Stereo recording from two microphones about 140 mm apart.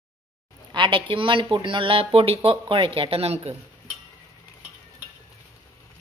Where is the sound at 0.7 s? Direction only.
35° right (ahead or behind).